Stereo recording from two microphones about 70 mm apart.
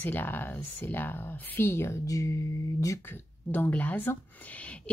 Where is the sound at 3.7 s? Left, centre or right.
Left.